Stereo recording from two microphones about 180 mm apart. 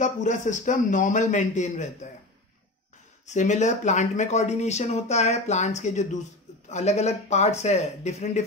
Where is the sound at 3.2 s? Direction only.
40° left (ahead or behind).